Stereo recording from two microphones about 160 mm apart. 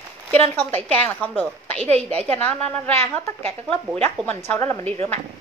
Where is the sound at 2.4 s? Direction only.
10° left (ahead or behind).